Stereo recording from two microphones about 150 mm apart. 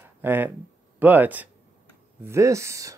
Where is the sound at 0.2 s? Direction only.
15° right (ahead or behind).